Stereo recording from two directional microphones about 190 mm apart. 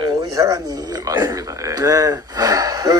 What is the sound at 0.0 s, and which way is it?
Speech, 20° right (ahead or behind).